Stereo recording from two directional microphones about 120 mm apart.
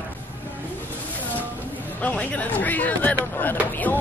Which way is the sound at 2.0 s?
10° left (ahead or behind).